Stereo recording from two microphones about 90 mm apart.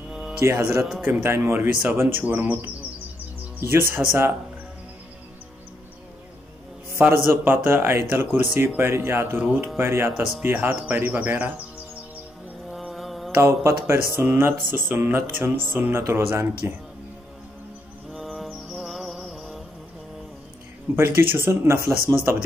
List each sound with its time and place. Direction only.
0.4 s music: 30° right (ahead or behind)
3.6 s music: 30° right (ahead or behind)
7.0 s music: 25° right (ahead or behind)
12.7 s mantra: centre (ahead or behind)
13.4 s music: 25° right (ahead or behind)
18.1 s music: centre (ahead or behind)
20.9 s music: 25° right (ahead or behind)